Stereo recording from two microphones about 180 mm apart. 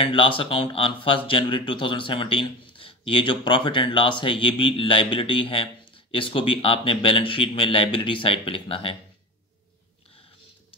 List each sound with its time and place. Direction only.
0.0 s speech: 30° left (ahead or behind)